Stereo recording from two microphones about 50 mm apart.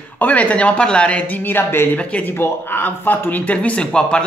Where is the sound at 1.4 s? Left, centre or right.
Left.